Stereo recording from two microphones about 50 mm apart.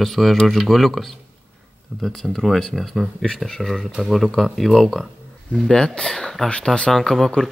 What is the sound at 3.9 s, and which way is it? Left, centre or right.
Speech, centre.